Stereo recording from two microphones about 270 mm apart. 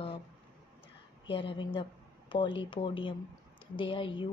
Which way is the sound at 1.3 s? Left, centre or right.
Centre.